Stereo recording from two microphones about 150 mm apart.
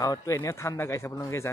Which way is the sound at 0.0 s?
25° left (ahead or behind).